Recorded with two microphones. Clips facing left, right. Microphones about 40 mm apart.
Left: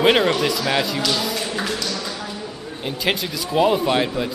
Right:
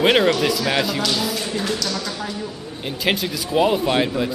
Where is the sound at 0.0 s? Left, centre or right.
Centre.